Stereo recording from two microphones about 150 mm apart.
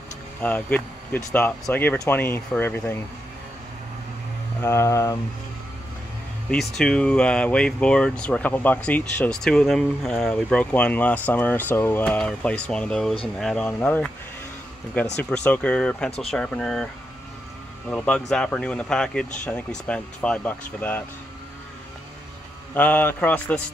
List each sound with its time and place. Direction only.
0.4 s speech: 10° left (ahead or behind)
4.6 s speech: 20° left (ahead or behind)
6.5 s speech: 5° left (ahead or behind)
15.2 s speech: 5° left (ahead or behind)
22.8 s speech: 10° left (ahead or behind)